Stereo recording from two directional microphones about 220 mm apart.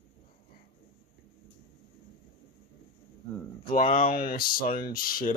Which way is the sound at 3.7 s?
35° left (ahead or behind).